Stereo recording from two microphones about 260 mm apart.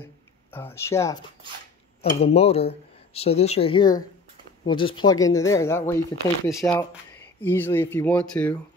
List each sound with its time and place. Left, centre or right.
0.0 s speech: centre
2.1 s speech: left; by 8.5 s centre